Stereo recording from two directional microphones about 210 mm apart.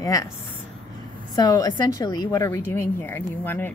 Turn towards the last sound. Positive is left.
turn(degrees=10)  # may be behind; listen again after turning